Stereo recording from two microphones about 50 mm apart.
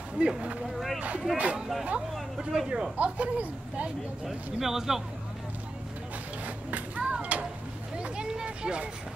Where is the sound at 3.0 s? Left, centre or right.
Right.